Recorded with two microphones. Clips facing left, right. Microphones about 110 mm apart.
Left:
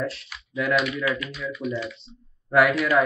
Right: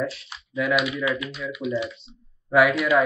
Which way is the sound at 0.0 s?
Centre (ahead or behind).